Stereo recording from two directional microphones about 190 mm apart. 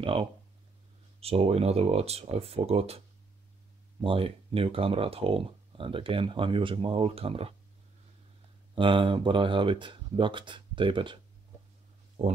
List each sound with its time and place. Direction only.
0.0 s speech: 25° right (ahead or behind)
4.0 s speech: 25° right (ahead or behind)
8.7 s speech: 25° right (ahead or behind)
12.2 s speech: 35° right (ahead or behind)